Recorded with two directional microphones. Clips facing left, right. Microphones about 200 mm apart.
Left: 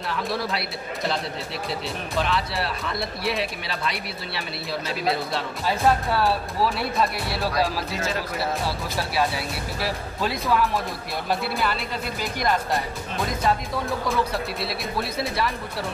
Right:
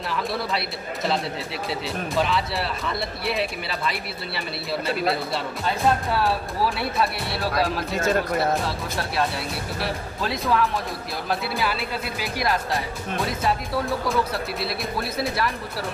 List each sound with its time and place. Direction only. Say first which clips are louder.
0.1 s speech: even; centre (ahead or behind)
7.9 s speech: right 6 dB; 50° right (ahead or behind)
8.6 s speech: even; centre (ahead or behind)